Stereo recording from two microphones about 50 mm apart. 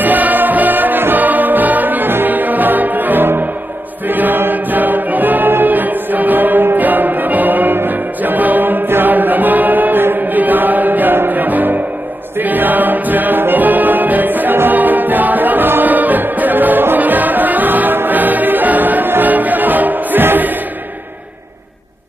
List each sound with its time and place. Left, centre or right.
0.0 s music: right
4.1 s choir: right
12.4 s music: right